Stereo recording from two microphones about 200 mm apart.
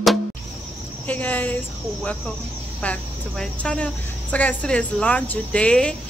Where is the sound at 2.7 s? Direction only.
5° left (ahead or behind).